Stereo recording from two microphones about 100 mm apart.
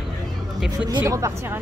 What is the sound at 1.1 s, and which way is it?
Speech, 30° right (ahead or behind).